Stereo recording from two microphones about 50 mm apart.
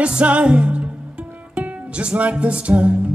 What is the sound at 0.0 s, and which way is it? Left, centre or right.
Music, right.